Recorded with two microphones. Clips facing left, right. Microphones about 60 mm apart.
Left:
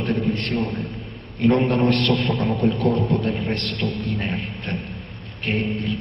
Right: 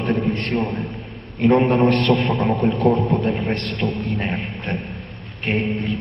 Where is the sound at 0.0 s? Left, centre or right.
Centre.